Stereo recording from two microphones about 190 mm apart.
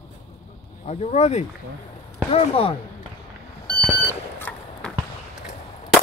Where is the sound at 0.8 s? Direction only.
35° left (ahead or behind).